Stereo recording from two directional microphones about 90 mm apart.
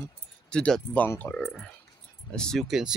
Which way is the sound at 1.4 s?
5° left (ahead or behind).